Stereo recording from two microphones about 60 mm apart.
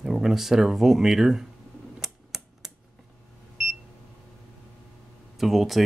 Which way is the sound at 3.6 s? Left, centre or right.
Centre.